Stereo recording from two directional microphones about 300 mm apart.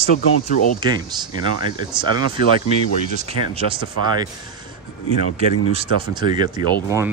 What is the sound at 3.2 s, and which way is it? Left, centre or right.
Speech, centre.